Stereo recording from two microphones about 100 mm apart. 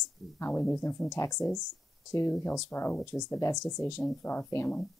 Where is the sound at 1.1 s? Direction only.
30° left (ahead or behind).